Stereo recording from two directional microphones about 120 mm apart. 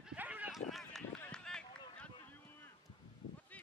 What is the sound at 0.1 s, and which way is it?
Run, 10° right (ahead or behind).